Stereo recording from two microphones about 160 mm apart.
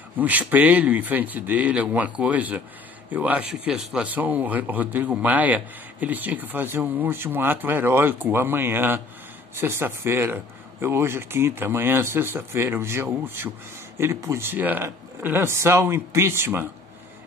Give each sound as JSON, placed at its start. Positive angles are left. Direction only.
{"t": 0.2, "sound": "speech", "side_deg": -10}